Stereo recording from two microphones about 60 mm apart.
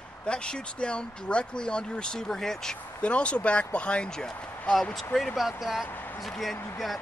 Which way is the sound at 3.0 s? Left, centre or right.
Centre.